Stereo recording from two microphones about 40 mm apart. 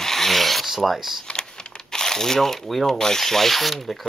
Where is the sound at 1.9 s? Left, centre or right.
Centre.